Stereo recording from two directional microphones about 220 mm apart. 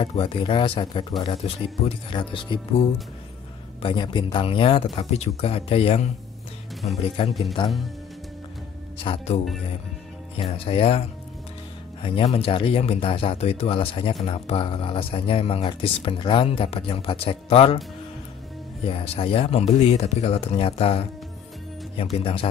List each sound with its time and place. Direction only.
0.0 s speech: 25° left (ahead or behind)
3.8 s speech: 20° left (ahead or behind)
9.0 s speech: 25° left (ahead or behind)
18.9 s speech: 25° left (ahead or behind)